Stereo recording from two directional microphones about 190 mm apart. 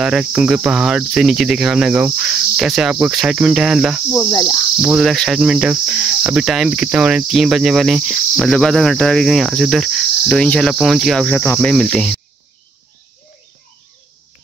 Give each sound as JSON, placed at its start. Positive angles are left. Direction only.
{"t": 0.0, "sound": "cricket", "side_deg": -5}
{"t": 4.3, "sound": "cricket", "side_deg": 15}
{"t": 4.8, "sound": "cricket", "side_deg": 0}